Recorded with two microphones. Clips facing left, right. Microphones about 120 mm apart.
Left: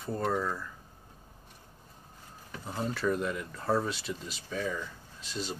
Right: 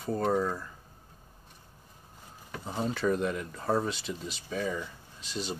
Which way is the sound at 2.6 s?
5° right (ahead or behind).